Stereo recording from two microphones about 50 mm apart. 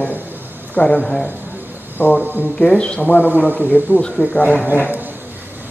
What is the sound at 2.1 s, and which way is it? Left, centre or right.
Speech, right.